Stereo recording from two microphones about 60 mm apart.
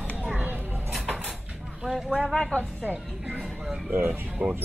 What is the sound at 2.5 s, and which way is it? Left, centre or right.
Speech, right.